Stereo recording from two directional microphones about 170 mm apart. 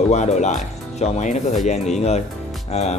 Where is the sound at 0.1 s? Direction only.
45° left (ahead or behind).